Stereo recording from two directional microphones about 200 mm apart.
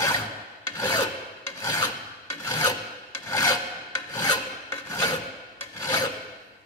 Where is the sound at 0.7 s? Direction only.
20° left (ahead or behind).